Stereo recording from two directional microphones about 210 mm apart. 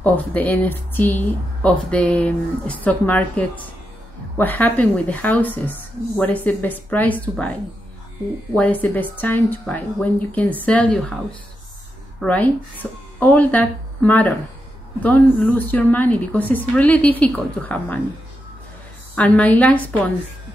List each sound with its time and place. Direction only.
0.0 s speech: 5° left (ahead or behind)
8.5 s a woman's voice: 10° left (ahead or behind)
12.2 s speech: 5° left (ahead or behind)
19.1 s speech: 5° left (ahead or behind)